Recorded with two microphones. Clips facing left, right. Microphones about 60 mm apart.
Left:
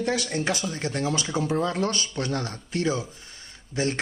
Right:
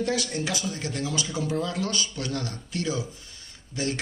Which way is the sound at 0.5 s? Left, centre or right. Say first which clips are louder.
Left 3 dB; left.